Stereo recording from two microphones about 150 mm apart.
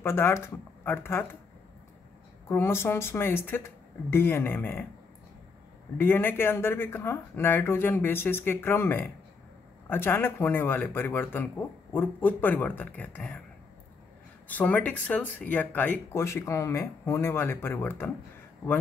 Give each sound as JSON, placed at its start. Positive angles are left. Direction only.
{"t": 0.0, "sound": "speech", "side_deg": 15}
{"t": 2.4, "sound": "speech", "side_deg": 15}
{"t": 5.9, "sound": "speech", "side_deg": 15}
{"t": 14.5, "sound": "speech", "side_deg": 10}